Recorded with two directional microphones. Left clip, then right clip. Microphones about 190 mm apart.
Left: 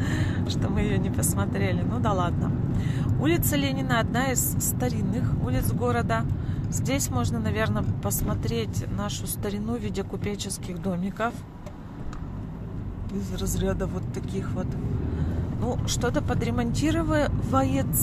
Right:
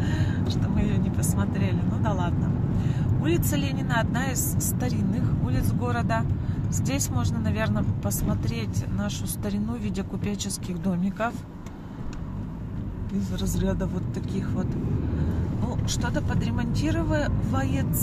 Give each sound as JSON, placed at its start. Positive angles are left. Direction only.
{"t": 0.0, "sound": "speech", "side_deg": 25}
{"t": 4.7, "sound": "speech", "side_deg": 10}
{"t": 13.2, "sound": "speech", "side_deg": 5}
{"t": 15.9, "sound": "speech", "side_deg": 20}